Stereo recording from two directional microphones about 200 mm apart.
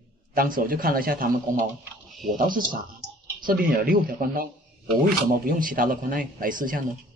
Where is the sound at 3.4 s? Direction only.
45° right (ahead or behind).